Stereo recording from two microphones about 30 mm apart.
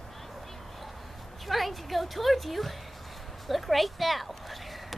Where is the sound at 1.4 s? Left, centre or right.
Centre.